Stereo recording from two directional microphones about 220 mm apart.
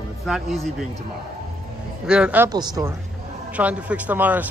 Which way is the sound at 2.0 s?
5° right (ahead or behind).